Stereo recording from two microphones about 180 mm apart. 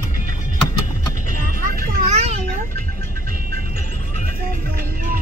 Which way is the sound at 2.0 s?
40° right (ahead or behind).